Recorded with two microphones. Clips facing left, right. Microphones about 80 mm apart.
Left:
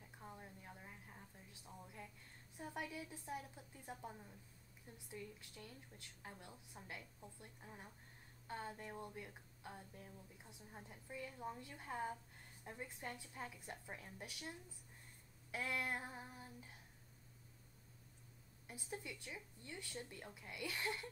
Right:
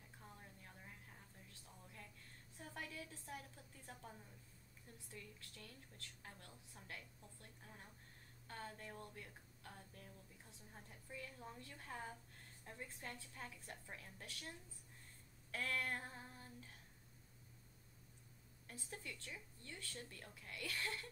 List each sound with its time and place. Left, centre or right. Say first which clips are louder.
0.2 s a sound: left 5 dB; centre
2.5 s speech: left 4 dB; centre
15.5 s speech: left 1 dB; centre
18.7 s speech: left 3 dB; centre